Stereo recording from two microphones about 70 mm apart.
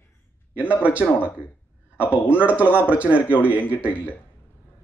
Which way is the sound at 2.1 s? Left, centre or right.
Right.